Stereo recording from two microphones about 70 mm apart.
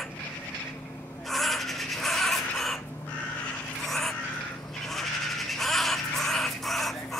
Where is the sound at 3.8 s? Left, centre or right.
Centre.